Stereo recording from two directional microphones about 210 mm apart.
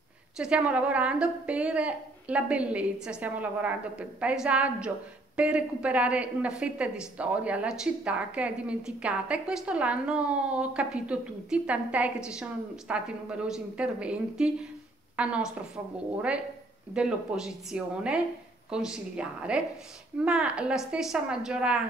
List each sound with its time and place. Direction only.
0.4 s a woman's voice: 5° right (ahead or behind)